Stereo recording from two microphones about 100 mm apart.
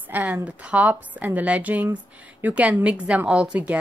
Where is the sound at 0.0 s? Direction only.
15° right (ahead or behind).